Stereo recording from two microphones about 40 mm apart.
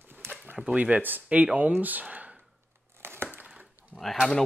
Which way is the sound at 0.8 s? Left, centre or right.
Right.